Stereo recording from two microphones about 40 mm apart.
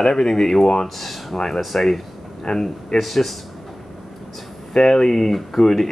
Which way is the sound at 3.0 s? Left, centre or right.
Centre.